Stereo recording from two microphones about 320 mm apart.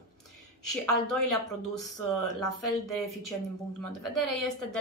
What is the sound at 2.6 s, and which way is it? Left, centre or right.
A woman's voice, left.